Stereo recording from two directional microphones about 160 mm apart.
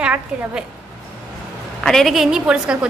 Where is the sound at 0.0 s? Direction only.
10° right (ahead or behind).